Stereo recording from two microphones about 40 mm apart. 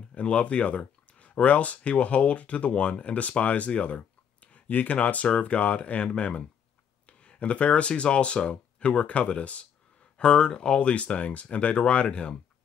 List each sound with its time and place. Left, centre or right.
0.1 s speech: left